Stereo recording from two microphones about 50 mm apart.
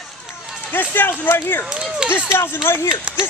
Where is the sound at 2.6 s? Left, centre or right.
Left.